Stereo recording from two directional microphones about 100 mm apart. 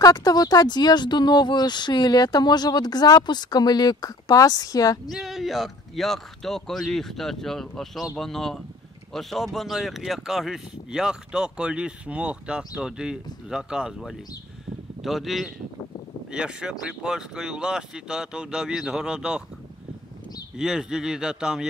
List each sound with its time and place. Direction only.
0.0 s speech: 40° left (ahead or behind)
5.1 s speech: centre (ahead or behind)
20.5 s speech: 5° right (ahead or behind)